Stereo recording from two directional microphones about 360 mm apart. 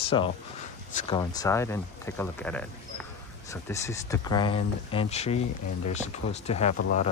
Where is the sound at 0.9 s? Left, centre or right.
Centre.